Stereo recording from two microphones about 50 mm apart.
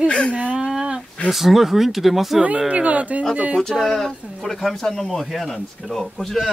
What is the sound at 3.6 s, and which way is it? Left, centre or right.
Speech, centre.